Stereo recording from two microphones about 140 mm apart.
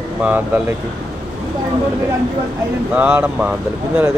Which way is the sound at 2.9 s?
15° right (ahead or behind).